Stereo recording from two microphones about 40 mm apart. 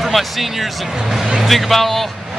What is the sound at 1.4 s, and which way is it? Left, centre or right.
Speech, centre.